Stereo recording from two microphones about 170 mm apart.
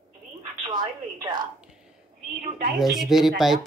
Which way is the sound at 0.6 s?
25° right (ahead or behind).